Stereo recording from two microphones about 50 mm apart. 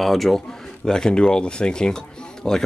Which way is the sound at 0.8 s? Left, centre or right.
Centre.